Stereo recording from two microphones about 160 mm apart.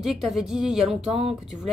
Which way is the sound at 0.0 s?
Centre (ahead or behind).